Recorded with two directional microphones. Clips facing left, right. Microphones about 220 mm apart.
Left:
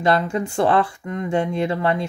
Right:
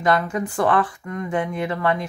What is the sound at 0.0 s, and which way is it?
Speech, 25° left (ahead or behind).